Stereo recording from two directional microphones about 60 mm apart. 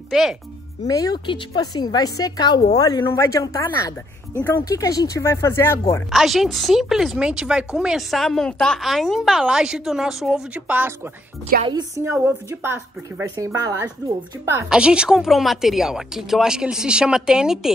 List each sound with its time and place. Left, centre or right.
0.1 s speech: centre
0.8 s a woman's voice: left
3.1 s speech: left
6.1 s a woman's voice: centre
8.2 s a woman's voice: centre
10.5 s speech: right
12.0 s a woman's voice: right
12.4 s speech: right
13.4 s a woman's voice: right
14.4 s a woman's voice: right
14.7 s speech: centre